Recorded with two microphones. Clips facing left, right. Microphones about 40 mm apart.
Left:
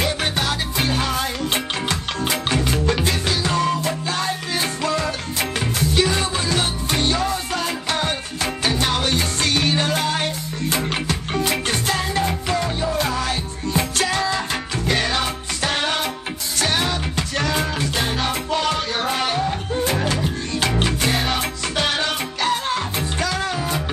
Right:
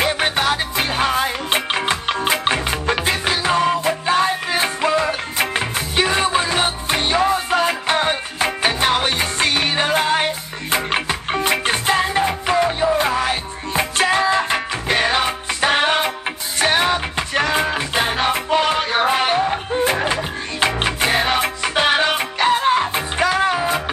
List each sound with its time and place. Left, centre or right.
0.0 s music: right